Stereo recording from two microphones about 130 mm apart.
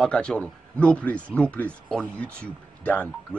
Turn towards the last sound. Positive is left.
turn(degrees=10)  # may be behind; listen again after turning